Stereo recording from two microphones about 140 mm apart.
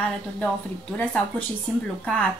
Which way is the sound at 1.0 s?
10° left (ahead or behind).